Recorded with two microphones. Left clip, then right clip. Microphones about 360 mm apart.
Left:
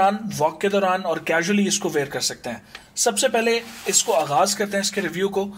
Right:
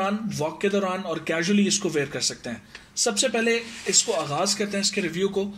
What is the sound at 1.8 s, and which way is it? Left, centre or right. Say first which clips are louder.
Speech: left 2 dB; left.